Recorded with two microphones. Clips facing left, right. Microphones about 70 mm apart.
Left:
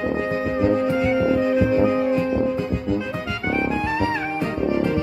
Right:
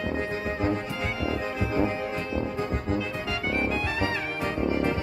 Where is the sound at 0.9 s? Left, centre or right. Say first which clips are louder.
Left 11 dB; left.